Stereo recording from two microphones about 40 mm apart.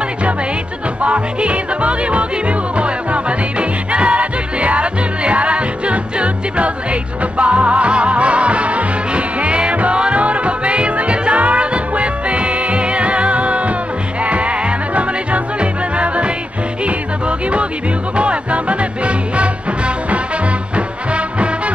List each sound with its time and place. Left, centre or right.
1.0 s music: right
18.1 s music: right
20.7 s music: right